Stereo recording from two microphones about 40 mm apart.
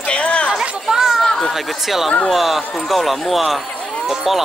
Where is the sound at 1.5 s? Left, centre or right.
Centre.